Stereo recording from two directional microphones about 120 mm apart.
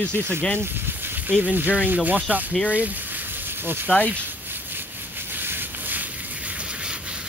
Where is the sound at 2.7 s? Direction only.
15° right (ahead or behind).